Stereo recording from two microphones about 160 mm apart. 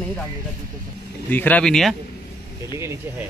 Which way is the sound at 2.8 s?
15° right (ahead or behind).